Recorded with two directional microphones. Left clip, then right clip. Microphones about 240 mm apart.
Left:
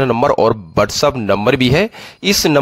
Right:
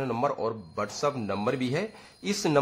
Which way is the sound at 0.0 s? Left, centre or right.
Left.